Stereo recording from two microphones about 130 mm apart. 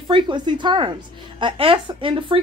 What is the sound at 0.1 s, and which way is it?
A woman's voice, 35° right (ahead or behind).